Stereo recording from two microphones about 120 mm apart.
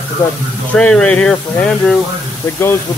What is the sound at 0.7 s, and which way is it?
Speech, 10° left (ahead or behind).